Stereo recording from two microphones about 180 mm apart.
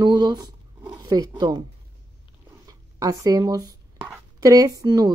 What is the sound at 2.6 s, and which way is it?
A woman's voice, 20° right (ahead or behind).